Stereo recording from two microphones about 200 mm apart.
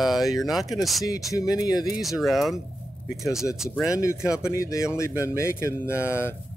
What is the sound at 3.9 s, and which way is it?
Speech, 15° left (ahead or behind).